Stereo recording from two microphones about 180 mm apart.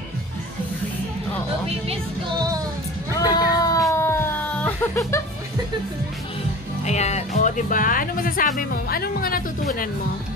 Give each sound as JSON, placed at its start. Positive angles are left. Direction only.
{"t": 3.2, "sound": "music", "side_deg": 20}
{"t": 3.9, "sound": "a sound", "side_deg": 15}
{"t": 6.8, "sound": "speech", "side_deg": 40}